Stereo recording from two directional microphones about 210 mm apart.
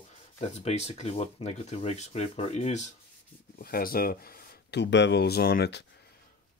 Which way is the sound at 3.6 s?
45° left (ahead or behind).